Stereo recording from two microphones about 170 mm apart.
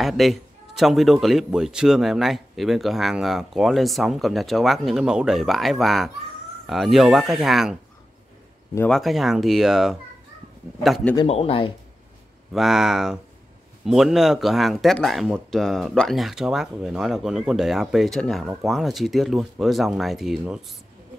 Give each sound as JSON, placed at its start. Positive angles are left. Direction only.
{"t": 0.0, "sound": "a man's voice", "side_deg": 0}
{"t": 8.7, "sound": "a man's voice", "side_deg": 5}
{"t": 11.1, "sound": "speech", "side_deg": 35}
{"t": 12.5, "sound": "a man's voice", "side_deg": 0}